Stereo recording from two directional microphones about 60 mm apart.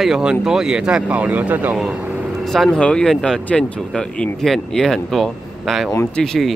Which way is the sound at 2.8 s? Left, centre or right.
Centre.